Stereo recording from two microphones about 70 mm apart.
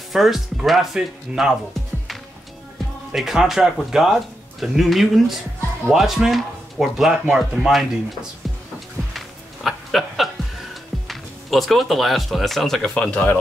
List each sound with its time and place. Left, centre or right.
0.1 s speech: centre
3.2 s speech: centre
9.1 s music: centre
12.9 s speech: centre